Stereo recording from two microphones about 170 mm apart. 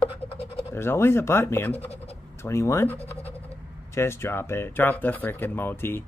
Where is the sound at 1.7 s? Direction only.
35° left (ahead or behind).